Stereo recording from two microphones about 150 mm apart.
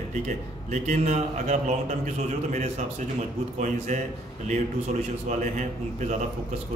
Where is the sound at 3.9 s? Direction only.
50° right (ahead or behind).